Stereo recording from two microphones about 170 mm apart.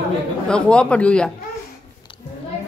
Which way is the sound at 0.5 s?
5° left (ahead or behind).